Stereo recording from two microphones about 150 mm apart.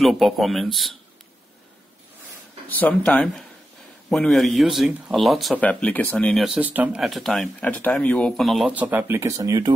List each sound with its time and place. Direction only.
0.0 s speech: centre (ahead or behind)
2.7 s speech: 10° left (ahead or behind)
8.7 s speech: 10° right (ahead or behind)